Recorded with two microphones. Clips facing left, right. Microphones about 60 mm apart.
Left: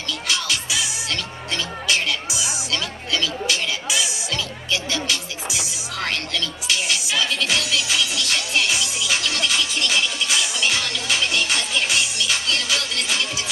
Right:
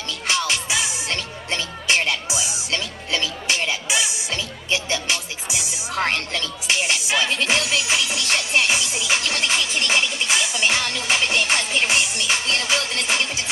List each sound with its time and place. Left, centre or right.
0.3 s music: right